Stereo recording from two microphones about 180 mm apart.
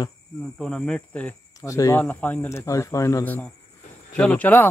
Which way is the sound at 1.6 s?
20° left (ahead or behind).